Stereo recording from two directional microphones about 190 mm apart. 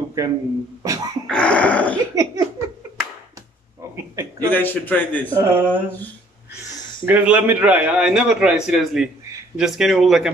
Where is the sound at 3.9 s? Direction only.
20° right (ahead or behind).